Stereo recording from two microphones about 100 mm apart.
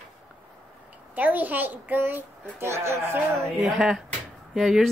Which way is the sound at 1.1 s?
15° right (ahead or behind).